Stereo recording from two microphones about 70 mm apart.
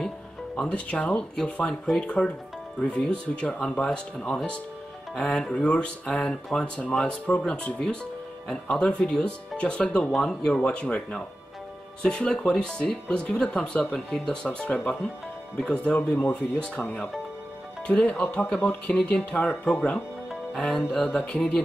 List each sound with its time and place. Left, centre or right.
0.7 s speech: centre